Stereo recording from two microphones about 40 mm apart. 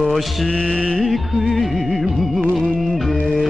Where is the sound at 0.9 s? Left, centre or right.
Centre.